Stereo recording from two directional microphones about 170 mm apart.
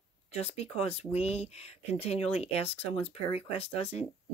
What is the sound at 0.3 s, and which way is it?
Speech, 40° left (ahead or behind).